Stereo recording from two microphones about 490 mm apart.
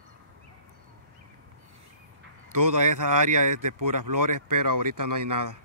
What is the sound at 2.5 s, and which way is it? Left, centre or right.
Speech, right.